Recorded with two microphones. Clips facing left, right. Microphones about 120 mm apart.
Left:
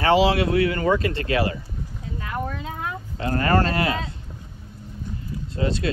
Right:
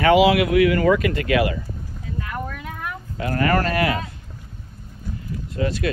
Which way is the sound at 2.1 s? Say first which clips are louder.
Left 1 dB; 25° left (ahead or behind).